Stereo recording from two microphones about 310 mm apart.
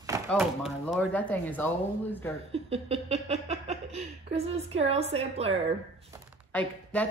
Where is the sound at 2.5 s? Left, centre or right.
Centre.